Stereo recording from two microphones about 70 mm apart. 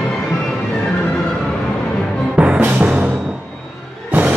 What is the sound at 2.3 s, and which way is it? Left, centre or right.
Music, centre.